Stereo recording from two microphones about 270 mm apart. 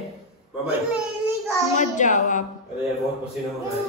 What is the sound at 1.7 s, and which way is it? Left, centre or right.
Speech, left.